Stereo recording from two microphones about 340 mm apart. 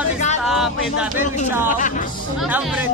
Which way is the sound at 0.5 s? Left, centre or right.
Centre.